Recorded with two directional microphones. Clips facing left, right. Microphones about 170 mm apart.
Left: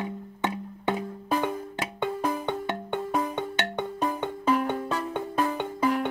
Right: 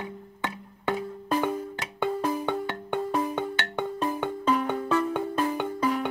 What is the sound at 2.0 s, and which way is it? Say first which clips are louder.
Music: right 2 dB; 5° right (ahead or behind).